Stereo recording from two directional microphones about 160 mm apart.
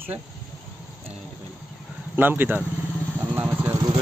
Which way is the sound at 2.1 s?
10° right (ahead or behind).